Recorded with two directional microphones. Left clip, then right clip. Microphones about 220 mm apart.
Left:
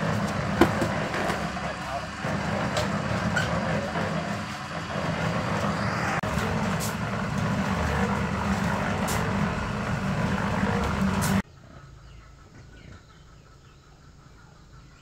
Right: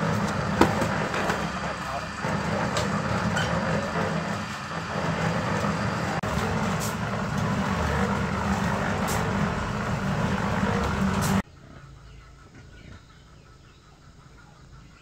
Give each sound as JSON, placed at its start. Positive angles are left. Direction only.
{"t": 0.0, "sound": "vehicle", "side_deg": -15}